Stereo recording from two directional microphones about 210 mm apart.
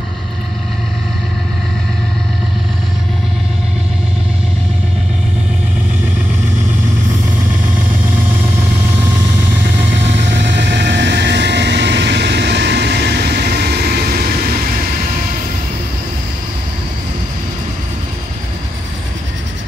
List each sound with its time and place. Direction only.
10.2 s vehicle: 55° right (ahead or behind)